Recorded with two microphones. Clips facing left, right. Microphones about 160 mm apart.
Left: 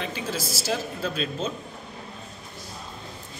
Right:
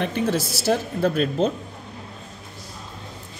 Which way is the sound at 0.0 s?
60° right (ahead or behind).